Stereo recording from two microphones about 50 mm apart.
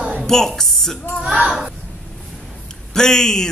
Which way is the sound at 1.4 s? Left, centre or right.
Centre.